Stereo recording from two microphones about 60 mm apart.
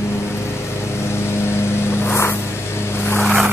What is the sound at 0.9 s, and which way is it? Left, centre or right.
Vehicle, left.